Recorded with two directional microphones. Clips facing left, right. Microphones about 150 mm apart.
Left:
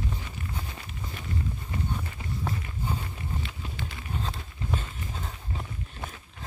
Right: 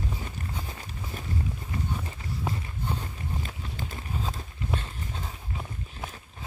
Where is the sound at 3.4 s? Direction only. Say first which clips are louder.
Even; 40° right (ahead or behind).